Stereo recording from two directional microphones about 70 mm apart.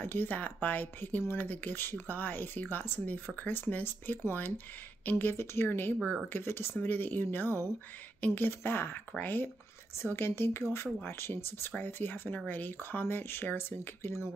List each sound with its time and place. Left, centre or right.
0.0 s speech: left